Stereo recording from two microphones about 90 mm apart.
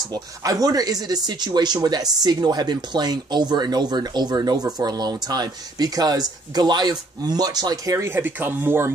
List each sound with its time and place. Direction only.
0.1 s speech: 40° right (ahead or behind); by 8.9 s 25° right (ahead or behind)